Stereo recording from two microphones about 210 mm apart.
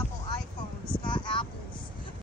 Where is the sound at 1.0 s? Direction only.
20° left (ahead or behind).